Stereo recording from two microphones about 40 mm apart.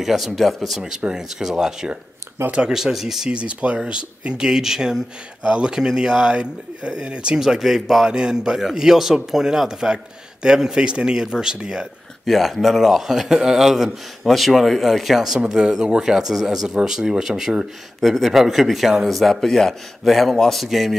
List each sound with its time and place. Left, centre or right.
0.0 s speech: centre
1.0 s a man's voice: centre
3.3 s speech: right
4.5 s a man's voice: centre
5.4 s speech: right
7.3 s a man's voice: centre
8.1 s a man's voice: centre
12.3 s speech: centre
14.2 s speech: centre
15.4 s a man's voice: right
18.0 s a man's voice: centre
20.6 s speech: centre